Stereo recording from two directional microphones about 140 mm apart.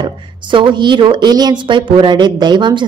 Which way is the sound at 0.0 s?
35° right (ahead or behind).